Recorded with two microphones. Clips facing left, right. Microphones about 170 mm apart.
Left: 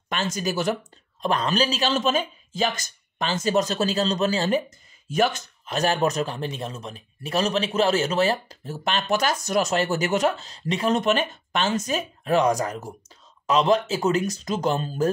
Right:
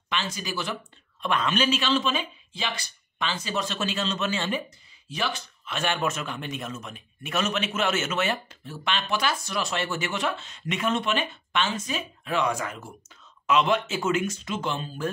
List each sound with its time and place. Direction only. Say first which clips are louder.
0.1 s a man's voice: left 5 dB; 45° left (ahead or behind)